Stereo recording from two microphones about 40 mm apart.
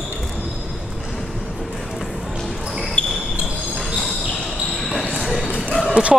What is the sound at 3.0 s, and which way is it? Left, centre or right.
Basketball bounce, left.